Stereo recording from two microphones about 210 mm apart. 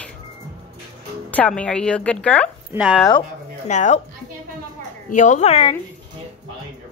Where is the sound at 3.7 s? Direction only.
35° left (ahead or behind).